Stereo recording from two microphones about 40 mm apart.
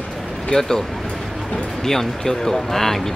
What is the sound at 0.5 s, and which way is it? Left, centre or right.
Speech, left.